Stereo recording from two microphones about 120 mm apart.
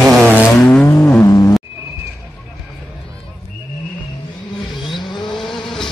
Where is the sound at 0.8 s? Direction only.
20° left (ahead or behind).